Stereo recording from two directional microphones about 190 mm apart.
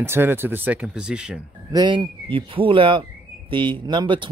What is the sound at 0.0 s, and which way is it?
Speech, 10° right (ahead or behind).